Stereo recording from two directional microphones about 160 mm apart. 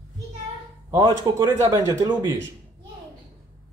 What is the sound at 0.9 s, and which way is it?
Speech, 20° right (ahead or behind).